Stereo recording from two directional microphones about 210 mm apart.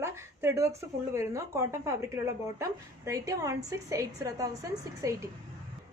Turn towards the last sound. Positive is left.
turn(degrees=-15)  # may be behind; listen again after turning